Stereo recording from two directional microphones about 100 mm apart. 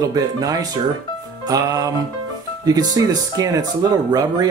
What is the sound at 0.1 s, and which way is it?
Speech, 40° right (ahead or behind).